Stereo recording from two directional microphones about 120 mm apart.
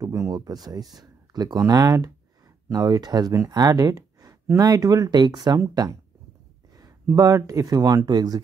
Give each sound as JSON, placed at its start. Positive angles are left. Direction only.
{"t": 0.0, "sound": "speech", "side_deg": -30}
{"t": 7.1, "sound": "speech", "side_deg": -25}